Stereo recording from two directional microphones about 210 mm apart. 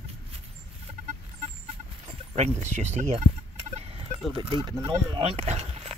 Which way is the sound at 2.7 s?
35° right (ahead or behind).